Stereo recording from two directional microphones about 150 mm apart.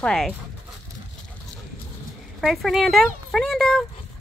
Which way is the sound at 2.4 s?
Centre (ahead or behind).